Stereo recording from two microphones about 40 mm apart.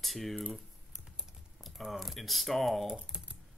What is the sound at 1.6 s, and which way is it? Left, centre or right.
Speech, centre.